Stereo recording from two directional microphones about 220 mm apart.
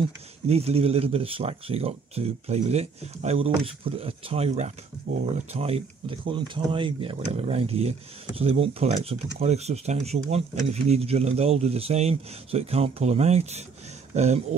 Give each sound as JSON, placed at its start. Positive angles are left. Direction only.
{"t": 0.5, "sound": "speech", "side_deg": -30}